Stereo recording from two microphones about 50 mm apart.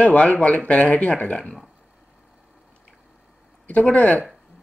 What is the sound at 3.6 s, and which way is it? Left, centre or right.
Speech, left.